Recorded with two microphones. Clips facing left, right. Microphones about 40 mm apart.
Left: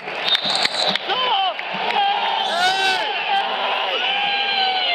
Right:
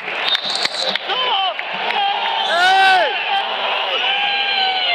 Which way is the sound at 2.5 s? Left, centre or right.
Right.